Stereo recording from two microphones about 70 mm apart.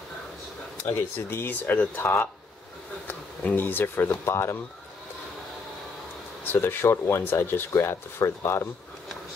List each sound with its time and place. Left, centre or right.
0.8 s speech: left
3.1 s speech: left
6.4 s speech: left